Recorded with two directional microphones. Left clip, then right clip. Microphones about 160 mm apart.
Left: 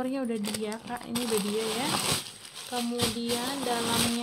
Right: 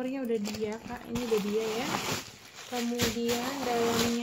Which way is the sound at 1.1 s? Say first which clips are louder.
Right 1 dB; 25° left (ahead or behind).